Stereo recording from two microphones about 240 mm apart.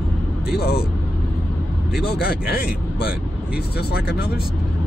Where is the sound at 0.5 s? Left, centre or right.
Left.